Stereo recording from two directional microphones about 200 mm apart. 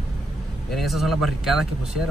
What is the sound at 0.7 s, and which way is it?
Speech, centre (ahead or behind).